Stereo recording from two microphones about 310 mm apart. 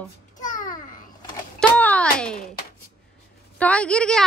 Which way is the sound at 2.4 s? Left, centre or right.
Left.